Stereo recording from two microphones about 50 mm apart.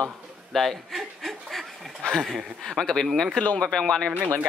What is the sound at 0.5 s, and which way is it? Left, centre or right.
Chuckle, centre.